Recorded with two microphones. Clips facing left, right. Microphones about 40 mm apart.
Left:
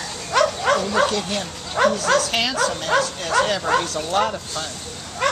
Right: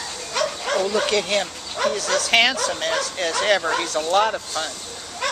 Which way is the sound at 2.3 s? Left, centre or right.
Right.